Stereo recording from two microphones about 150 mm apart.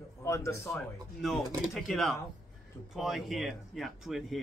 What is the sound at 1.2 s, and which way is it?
Speech, centre (ahead or behind).